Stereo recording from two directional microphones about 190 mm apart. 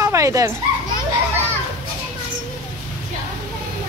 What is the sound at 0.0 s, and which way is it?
Dog, 15° right (ahead or behind).